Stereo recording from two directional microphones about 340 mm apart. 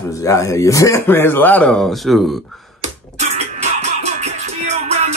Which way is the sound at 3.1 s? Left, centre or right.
Centre.